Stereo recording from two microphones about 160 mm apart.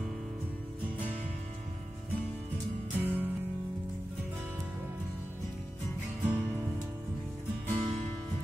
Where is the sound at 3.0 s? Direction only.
10° right (ahead or behind).